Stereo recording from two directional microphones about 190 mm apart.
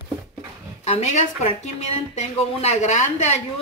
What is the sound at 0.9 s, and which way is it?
A woman's voice, 35° left (ahead or behind).